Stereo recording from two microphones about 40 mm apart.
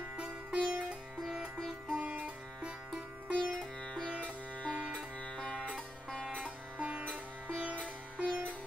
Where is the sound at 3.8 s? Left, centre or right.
Left.